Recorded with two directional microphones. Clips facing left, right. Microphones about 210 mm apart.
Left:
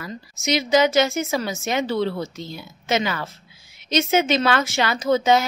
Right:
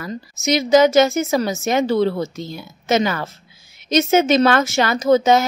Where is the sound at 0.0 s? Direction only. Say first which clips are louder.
Right 5 dB; 45° right (ahead or behind).